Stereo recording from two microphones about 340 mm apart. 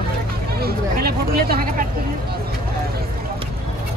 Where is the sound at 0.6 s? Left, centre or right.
Right.